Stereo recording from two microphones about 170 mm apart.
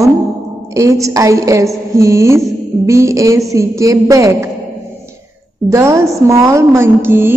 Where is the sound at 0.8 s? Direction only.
20° right (ahead or behind).